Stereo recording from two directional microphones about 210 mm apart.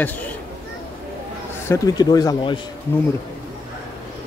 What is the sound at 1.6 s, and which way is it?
Speech, 15° left (ahead or behind).